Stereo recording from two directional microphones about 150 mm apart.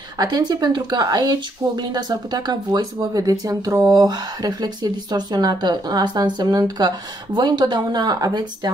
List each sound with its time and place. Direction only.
0.2 s speech: 25° right (ahead or behind)